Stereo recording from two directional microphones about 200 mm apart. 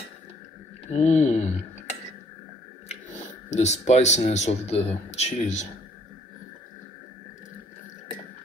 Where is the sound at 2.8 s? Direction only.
35° left (ahead or behind).